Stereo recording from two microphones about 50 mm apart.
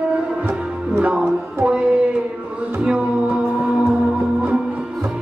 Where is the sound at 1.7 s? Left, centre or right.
Right.